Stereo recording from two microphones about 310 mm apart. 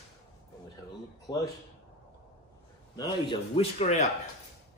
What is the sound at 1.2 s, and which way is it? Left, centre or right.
Speech, centre.